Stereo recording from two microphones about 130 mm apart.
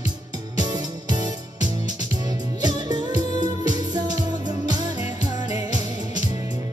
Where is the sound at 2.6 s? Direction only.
30° right (ahead or behind).